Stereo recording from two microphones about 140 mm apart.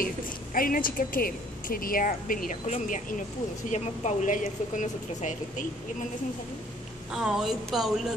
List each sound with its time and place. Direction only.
0.0 s a woman's voice: 90° left; by 6.0 s 60° left (ahead or behind)
7.1 s speech: 5° right (ahead or behind)